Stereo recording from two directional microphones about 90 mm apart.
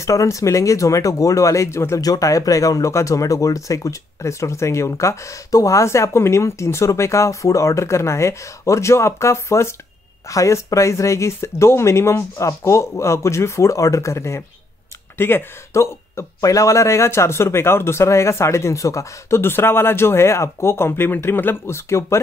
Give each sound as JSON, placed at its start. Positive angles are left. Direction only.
{"t": 0.0, "sound": "speech", "side_deg": 35}
{"t": 2.0, "sound": "speech", "side_deg": 40}